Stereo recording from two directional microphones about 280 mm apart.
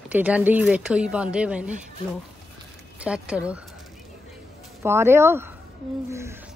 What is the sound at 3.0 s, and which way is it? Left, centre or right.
Speech, centre.